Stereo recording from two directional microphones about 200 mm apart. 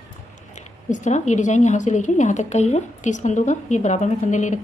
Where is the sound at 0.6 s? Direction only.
40° left (ahead or behind).